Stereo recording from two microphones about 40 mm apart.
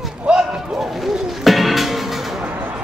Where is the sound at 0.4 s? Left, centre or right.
Right.